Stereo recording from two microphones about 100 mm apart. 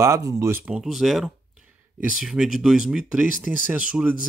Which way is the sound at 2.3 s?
5° right (ahead or behind).